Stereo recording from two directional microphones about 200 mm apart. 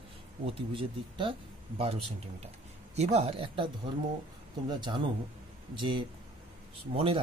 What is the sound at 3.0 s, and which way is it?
Speech, 35° right (ahead or behind).